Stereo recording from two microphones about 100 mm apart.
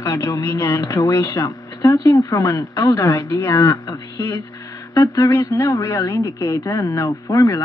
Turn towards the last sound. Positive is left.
turn(degrees=30)  # may be behind; listen again after turning